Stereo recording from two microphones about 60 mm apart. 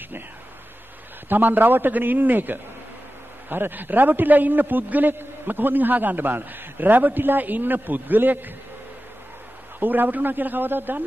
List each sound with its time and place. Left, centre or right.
1.3 s a man's voice: right
9.8 s a man's voice: right